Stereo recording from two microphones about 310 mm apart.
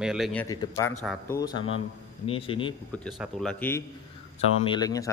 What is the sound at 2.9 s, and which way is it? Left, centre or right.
A man's voice, centre.